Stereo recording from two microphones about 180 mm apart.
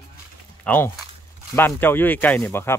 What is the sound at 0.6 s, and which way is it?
Speech, 10° left (ahead or behind).